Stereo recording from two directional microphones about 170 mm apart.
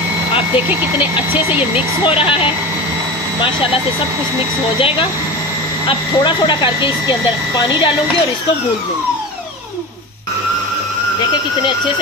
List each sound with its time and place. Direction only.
2.0 s speech: 30° left (ahead or behind)
4.7 s speech: 30° left (ahead or behind)